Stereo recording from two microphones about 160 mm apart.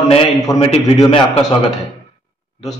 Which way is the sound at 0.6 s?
40° left (ahead or behind).